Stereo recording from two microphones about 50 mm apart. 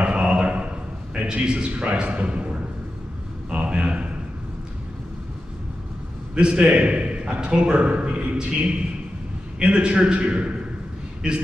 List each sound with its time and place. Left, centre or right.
0.0 s a sound: right
1.1 s a man's voice: right
3.5 s a man's voice: right
6.3 s a man's voice: right